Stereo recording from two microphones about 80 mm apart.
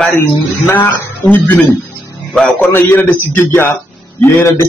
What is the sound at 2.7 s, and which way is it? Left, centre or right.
Speech, left.